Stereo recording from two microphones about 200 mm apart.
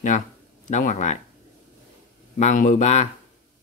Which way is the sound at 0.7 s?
35° left (ahead or behind).